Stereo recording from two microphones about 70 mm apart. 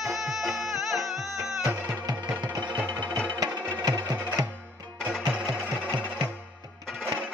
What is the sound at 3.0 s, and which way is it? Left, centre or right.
Music, left.